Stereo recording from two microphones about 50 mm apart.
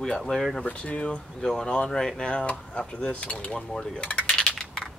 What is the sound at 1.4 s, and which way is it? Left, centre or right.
Speech, centre.